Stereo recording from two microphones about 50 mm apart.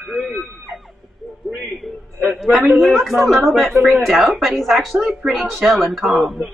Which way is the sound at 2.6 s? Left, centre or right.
Centre.